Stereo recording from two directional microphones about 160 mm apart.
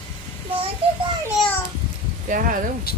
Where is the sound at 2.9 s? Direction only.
70° left (ahead or behind).